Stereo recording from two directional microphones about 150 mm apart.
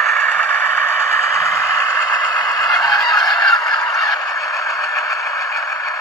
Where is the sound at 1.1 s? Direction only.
20° left (ahead or behind).